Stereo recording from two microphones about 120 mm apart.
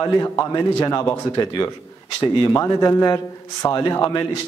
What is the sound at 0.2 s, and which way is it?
Speech, 30° left (ahead or behind).